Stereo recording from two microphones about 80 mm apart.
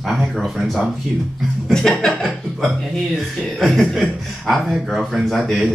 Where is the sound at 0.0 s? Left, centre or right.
Centre.